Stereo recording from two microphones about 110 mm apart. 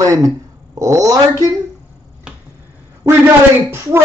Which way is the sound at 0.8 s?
30° right (ahead or behind).